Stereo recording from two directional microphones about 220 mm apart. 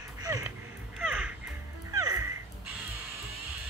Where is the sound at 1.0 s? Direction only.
5° right (ahead or behind).